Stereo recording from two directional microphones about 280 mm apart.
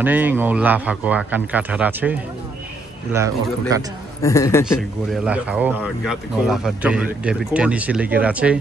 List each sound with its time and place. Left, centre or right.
0.0 s a man's voice: centre
4.2 s a man's voice: centre
4.7 s speech: centre